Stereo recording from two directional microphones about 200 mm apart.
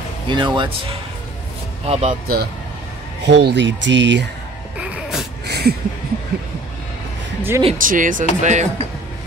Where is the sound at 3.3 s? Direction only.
60° right (ahead or behind).